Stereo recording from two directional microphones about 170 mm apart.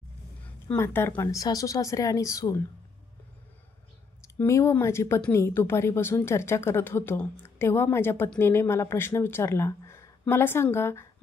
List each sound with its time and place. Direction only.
0.7 s speech: 15° left (ahead or behind)
4.4 s speech: 15° left (ahead or behind)